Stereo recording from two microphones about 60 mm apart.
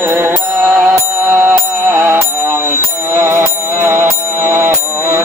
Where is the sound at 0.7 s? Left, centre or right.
Centre.